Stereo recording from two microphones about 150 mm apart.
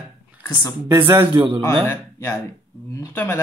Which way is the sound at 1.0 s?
30° right (ahead or behind).